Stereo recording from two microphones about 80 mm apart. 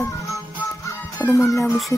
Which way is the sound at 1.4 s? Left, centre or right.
Left.